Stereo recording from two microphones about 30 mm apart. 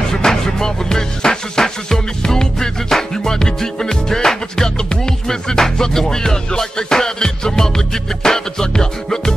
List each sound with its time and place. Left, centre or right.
0.2 s music: centre